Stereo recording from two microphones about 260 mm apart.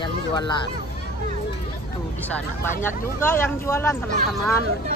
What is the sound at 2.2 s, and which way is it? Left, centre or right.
Speech, centre.